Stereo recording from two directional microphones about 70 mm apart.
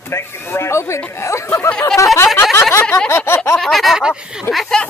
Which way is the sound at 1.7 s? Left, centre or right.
Centre.